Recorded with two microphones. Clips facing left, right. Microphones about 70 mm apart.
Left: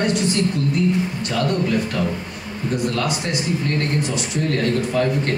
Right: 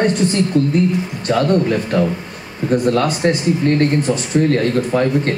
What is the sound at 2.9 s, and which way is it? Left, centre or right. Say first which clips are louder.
A man's voice: right 8 dB; right.